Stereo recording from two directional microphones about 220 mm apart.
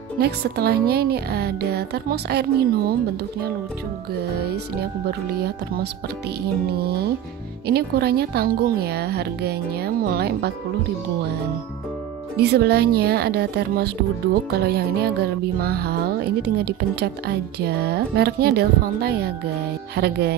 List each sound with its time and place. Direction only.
0.2 s speech: 45° right (ahead or behind)
4.1 s speech: 45° right (ahead or behind)
6.7 s speech: 45° right (ahead or behind)
12.4 s speech: 45° right (ahead or behind)